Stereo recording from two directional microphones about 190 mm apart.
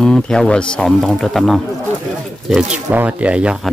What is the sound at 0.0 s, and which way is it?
Speech, 5° left (ahead or behind).